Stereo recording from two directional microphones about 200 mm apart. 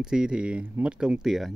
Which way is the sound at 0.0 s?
5° right (ahead or behind).